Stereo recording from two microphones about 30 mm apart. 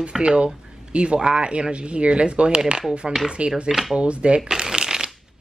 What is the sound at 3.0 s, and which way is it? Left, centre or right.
Speech, centre.